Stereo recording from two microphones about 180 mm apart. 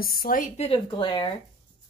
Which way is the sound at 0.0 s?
55° left (ahead or behind).